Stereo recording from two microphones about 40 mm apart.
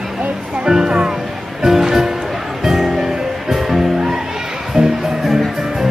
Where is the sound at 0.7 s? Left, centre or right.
Centre.